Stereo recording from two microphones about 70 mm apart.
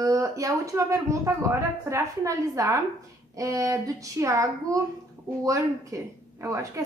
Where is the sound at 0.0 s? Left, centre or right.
Right.